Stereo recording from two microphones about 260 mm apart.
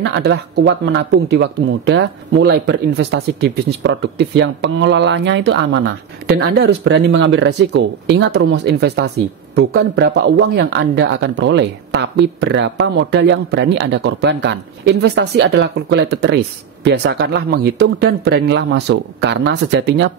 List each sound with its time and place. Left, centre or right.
0.0 s speech: right